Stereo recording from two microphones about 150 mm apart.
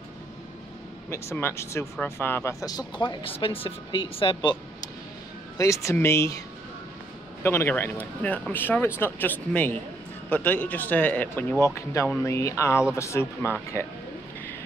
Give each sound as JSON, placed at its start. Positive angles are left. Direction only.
{"t": 1.1, "sound": "speech", "side_deg": 15}
{"t": 2.6, "sound": "a woman's voice", "side_deg": 25}
{"t": 5.6, "sound": "speech", "side_deg": 20}
{"t": 7.4, "sound": "speech", "side_deg": 15}